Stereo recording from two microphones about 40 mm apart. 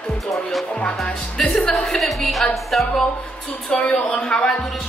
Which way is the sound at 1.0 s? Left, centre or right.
Centre.